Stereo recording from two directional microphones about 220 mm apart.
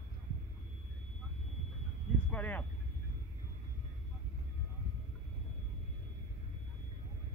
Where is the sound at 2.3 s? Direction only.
5° left (ahead or behind).